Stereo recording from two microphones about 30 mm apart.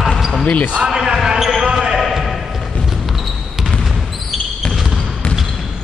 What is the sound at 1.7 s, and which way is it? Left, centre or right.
Basketball bounce, centre.